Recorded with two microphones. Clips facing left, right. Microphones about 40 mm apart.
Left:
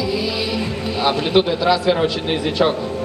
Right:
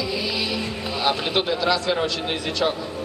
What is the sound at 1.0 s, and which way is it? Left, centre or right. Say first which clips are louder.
A man's voice: left 6 dB; centre.